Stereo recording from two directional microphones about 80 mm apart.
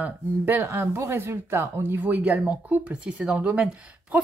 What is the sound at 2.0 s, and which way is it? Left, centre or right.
Speech, centre.